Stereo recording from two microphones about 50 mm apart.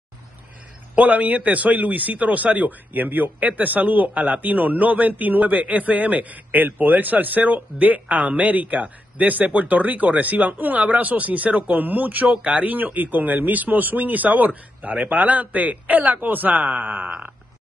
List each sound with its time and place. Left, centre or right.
0.9 s speech: right
12.7 s speech: right